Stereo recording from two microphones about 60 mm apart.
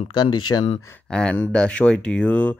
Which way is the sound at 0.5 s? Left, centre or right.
Left.